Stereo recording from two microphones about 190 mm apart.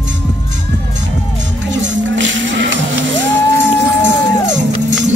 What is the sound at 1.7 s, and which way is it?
Music, 75° right (ahead or behind).